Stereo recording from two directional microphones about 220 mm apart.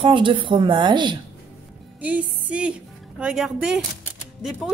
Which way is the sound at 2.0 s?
5° right (ahead or behind).